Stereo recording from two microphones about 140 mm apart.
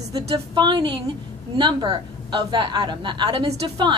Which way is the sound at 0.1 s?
35° right (ahead or behind).